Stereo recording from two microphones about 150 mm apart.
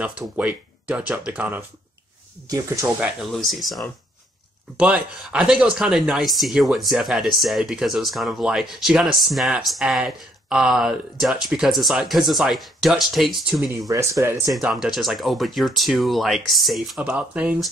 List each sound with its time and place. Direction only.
0.0 s speech: 10° right (ahead or behind)
2.4 s speech: 20° right (ahead or behind)
3.0 s speech: centre (ahead or behind)
13.8 s speech: 20° right (ahead or behind)
14.5 s speech: 5° right (ahead or behind)